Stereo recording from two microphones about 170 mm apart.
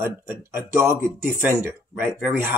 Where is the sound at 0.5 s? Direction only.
15° right (ahead or behind).